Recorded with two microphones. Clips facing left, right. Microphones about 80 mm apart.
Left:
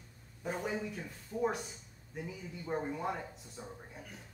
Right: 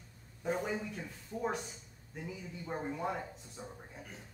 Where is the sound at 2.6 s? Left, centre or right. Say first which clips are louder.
Left 1 dB; centre.